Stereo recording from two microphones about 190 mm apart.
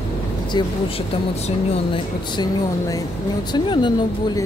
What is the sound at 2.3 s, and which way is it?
Speech, 20° left (ahead or behind).